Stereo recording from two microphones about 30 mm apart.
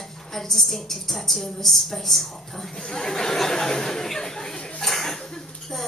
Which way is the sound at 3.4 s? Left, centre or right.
Centre.